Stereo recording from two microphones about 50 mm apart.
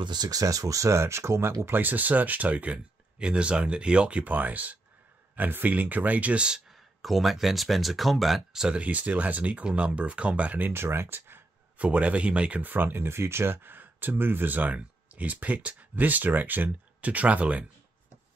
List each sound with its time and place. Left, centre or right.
0.7 s speech: right
1.8 s speech: right
4.2 s speech: right
6.7 s speech: centre
8.5 s speech: centre
8.8 s speech: right
10.7 s speech: right
11.8 s speech: right
12.6 s speech: right